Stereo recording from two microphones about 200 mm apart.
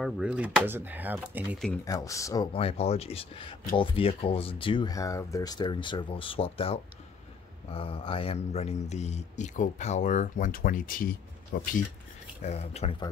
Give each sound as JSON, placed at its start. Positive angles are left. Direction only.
{"t": 0.0, "sound": "speech", "side_deg": -5}
{"t": 1.9, "sound": "speech", "side_deg": 15}
{"t": 2.5, "sound": "speech", "side_deg": 30}
{"t": 12.4, "sound": "speech", "side_deg": 35}